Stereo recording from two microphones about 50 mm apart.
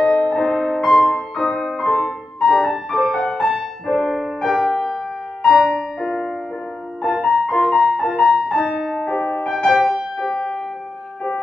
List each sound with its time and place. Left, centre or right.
0.0 s music: centre
0.5 s music: centre
6.0 s music: centre
9.0 s music: centre
10.3 s piano: centre